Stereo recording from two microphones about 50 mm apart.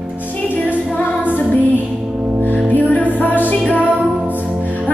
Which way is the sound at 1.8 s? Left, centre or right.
Right.